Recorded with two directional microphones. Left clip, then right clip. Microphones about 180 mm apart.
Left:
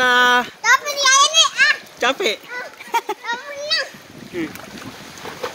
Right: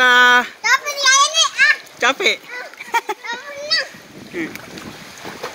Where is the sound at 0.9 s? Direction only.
20° left (ahead or behind).